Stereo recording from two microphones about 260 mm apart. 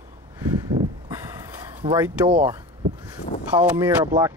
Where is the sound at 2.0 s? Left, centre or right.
Centre.